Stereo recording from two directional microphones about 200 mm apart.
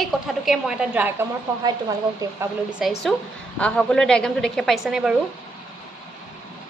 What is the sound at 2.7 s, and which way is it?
A woman's voice, centre (ahead or behind).